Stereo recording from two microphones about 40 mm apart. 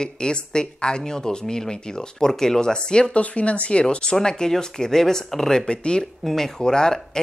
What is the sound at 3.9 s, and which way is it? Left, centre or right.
Speech, left.